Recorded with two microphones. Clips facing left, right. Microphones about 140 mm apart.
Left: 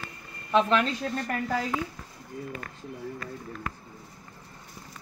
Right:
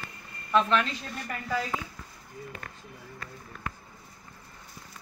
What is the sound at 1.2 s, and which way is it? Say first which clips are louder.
Speech: even; 50° left (ahead or behind).